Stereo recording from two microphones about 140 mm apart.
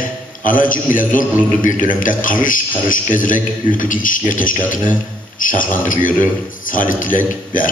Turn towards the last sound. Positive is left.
turn(degrees=75)  # may be behind; listen again after turning